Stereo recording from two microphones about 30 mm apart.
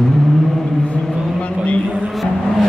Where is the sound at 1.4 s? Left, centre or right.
Left.